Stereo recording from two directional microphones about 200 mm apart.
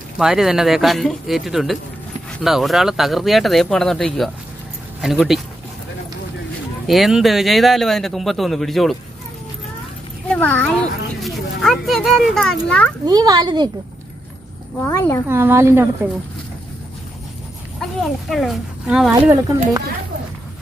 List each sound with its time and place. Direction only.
0.2 s a child's voice: centre (ahead or behind)
6.9 s a child's voice: centre (ahead or behind)
10.2 s a child's voice: 5° left (ahead or behind)
13.0 s a child's voice: 20° right (ahead or behind)
14.8 s a woman's voice: 15° left (ahead or behind)
15.2 s speech: 10° right (ahead or behind)
17.7 s speech: centre (ahead or behind)